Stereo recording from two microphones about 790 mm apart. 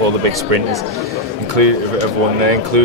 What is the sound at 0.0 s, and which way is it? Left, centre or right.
Speech, right.